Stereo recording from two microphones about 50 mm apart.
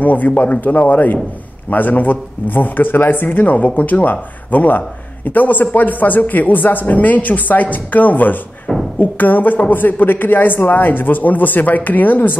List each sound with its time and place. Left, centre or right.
0.0 s a woman's voice: left